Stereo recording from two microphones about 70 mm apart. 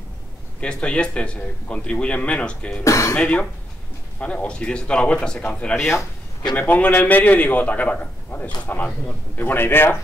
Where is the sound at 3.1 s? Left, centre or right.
Centre.